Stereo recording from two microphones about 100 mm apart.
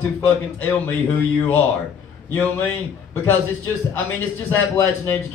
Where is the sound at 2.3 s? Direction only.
20° left (ahead or behind).